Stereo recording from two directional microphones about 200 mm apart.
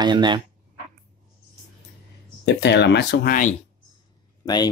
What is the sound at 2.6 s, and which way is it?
Speech, 60° left (ahead or behind).